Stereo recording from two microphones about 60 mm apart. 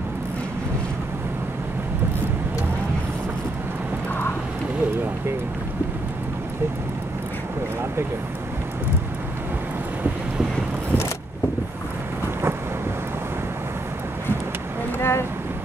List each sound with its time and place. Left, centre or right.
15.0 s boat: left